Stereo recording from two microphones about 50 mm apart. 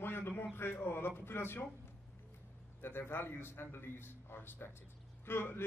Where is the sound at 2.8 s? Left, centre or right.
Left.